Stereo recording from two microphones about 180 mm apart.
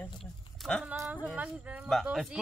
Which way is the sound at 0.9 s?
15° right (ahead or behind).